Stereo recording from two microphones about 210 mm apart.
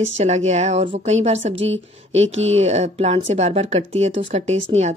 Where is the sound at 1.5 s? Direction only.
60° right (ahead or behind).